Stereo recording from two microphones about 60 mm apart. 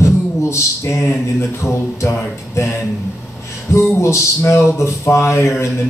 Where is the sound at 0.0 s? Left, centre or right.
Left.